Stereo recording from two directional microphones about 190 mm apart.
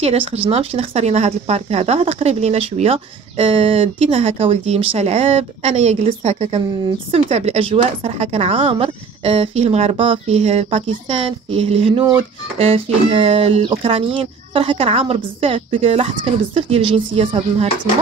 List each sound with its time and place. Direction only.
0.0 s a woman's voice: 30° right (ahead or behind)